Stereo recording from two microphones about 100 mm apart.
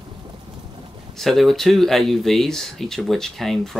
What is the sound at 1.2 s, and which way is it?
Speech, centre (ahead or behind).